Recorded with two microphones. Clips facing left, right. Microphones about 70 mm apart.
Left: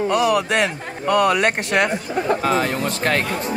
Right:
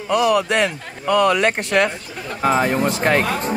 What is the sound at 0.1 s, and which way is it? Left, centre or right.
Speech, centre.